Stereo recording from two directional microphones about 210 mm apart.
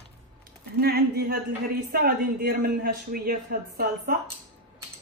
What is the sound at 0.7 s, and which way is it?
A woman's voice, 45° right (ahead or behind).